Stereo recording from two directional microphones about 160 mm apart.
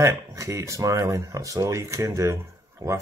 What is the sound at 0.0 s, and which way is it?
Speech, 20° right (ahead or behind).